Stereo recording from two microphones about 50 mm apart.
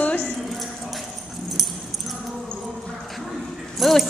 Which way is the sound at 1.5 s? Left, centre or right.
Centre.